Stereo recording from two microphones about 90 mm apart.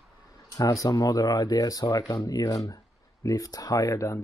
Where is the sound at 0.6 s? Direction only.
40° left (ahead or behind).